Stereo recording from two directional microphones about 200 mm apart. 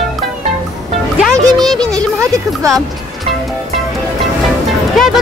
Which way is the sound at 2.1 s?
15° right (ahead or behind).